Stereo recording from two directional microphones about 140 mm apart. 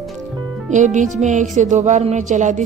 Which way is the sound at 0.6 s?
60° right (ahead or behind).